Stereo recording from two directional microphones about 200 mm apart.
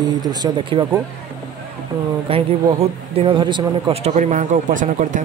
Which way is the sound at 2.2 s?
30° right (ahead or behind).